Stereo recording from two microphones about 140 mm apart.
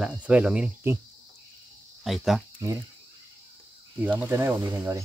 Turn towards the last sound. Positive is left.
turn(degrees=-15)  # may be behind; listen again after turning